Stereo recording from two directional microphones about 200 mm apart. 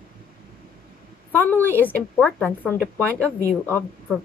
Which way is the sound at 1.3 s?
10° left (ahead or behind).